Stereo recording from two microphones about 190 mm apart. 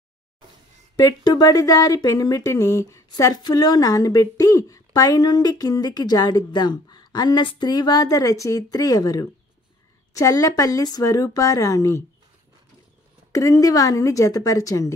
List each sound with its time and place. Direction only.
0.9 s speech: 20° left (ahead or behind)
13.3 s speech: 15° left (ahead or behind)